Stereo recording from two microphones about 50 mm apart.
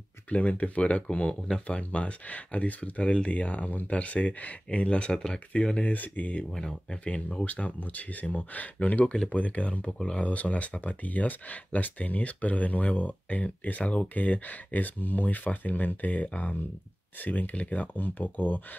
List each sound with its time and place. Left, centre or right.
0.3 s speech: left
5.8 s speech: left
6.5 s speech: centre
6.9 s speech: left
9.0 s speech: centre
9.3 s speech: left